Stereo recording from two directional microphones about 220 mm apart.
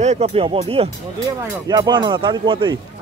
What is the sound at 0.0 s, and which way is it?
Speech, 30° right (ahead or behind).